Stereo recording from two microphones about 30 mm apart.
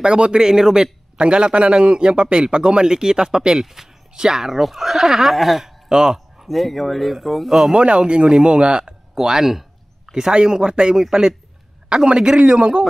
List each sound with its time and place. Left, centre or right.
0.0 s speech: right
1.1 s a man's voice: right
4.5 s speech: centre
5.9 s a sound: centre
6.5 s speech: centre
7.7 s a man's voice: right
9.1 s speech: centre
10.3 s a man's voice: right